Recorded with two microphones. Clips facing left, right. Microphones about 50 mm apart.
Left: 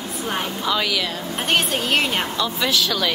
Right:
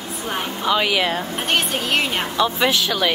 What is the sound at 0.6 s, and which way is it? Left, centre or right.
Speech, centre.